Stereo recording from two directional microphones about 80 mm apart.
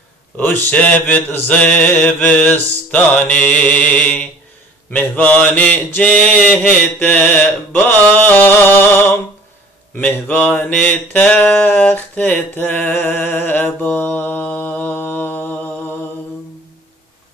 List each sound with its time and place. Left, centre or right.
0.7 s speech: centre